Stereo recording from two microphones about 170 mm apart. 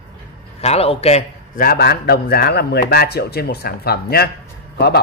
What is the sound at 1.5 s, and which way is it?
Speech, 65° left (ahead or behind).